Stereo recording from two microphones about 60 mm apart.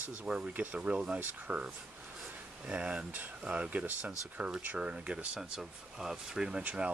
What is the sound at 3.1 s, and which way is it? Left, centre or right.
Speech, right.